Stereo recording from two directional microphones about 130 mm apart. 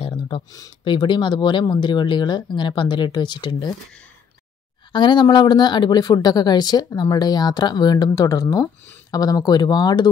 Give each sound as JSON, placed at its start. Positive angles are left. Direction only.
{"t": 0.5, "sound": "speech", "side_deg": 30}
{"t": 4.9, "sound": "speech", "side_deg": 35}